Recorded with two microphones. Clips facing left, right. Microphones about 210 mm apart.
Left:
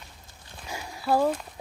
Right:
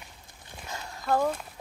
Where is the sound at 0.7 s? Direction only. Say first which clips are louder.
Left 2 dB; 10° left (ahead or behind).